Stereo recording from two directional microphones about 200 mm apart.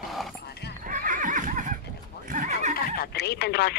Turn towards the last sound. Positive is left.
turn(degrees=55)  # may be behind; listen again after turning